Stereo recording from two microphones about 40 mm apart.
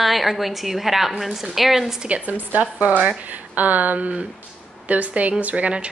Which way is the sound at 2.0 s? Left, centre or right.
Right.